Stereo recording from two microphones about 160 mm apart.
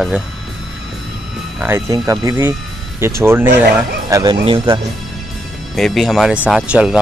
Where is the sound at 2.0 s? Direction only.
20° right (ahead or behind).